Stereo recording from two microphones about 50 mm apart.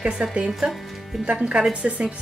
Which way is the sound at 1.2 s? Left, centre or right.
Right.